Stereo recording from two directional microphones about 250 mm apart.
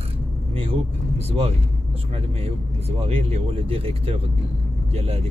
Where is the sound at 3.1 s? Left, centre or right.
Right.